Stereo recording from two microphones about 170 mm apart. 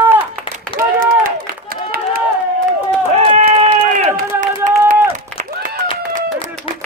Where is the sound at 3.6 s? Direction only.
50° right (ahead or behind).